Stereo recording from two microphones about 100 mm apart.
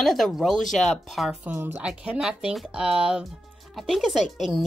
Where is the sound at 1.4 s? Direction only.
20° right (ahead or behind).